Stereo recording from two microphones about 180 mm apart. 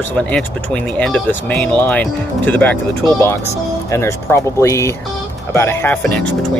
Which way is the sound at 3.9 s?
15° left (ahead or behind).